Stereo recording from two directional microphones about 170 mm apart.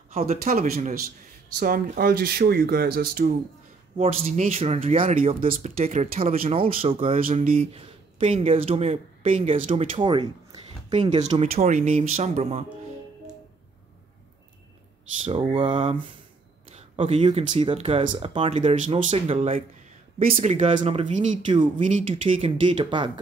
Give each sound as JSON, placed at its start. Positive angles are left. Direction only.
{"t": 0.7, "sound": "speech", "side_deg": -55}
{"t": 4.0, "sound": "speech", "side_deg": -40}
{"t": 5.5, "sound": "speech", "side_deg": -55}
{"t": 5.9, "sound": "speech", "side_deg": -40}
{"t": 7.2, "sound": "speech", "side_deg": -55}
{"t": 7.5, "sound": "speech", "side_deg": -35}
{"t": 11.0, "sound": "speech", "side_deg": -40}
{"t": 15.2, "sound": "speech", "side_deg": -35}
{"t": 21.5, "sound": "speech", "side_deg": -30}